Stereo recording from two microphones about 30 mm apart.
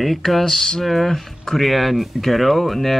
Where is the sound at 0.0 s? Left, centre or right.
Centre.